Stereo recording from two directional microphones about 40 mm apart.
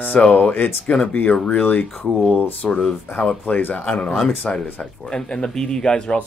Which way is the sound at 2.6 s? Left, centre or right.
Centre.